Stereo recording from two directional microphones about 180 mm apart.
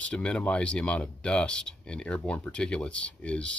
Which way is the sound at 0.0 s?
5° left (ahead or behind).